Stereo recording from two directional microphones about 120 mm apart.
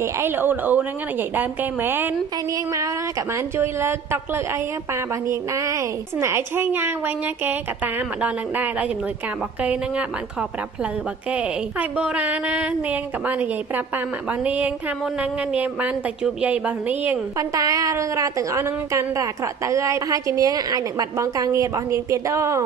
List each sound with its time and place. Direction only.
0.0 s speech: 20° right (ahead or behind)
2.5 s a woman's voice: 30° right (ahead or behind); by 10.0 s 10° right (ahead or behind)
11.3 s speech: 10° right (ahead or behind)
17.4 s a woman's voice: 30° right (ahead or behind)